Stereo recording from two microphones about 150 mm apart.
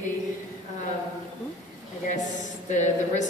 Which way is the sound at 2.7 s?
55° left (ahead or behind).